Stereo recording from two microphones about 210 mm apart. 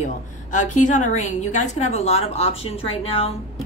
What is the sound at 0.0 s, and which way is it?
A woman's voice, 35° left (ahead or behind).